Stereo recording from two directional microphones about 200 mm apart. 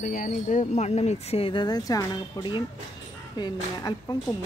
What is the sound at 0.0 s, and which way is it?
Speech, 40° left (ahead or behind).